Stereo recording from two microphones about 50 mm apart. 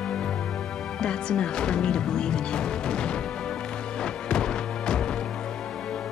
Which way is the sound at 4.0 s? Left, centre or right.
Centre.